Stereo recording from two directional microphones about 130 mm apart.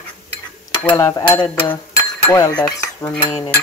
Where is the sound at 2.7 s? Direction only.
25° left (ahead or behind).